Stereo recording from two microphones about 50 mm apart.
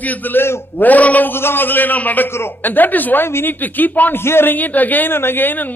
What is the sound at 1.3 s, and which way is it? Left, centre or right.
A man's voice, left.